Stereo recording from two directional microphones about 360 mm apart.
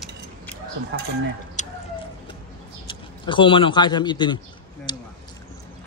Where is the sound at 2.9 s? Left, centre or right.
Centre.